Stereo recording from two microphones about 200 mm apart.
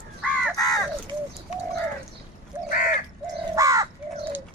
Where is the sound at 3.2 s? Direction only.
15° right (ahead or behind).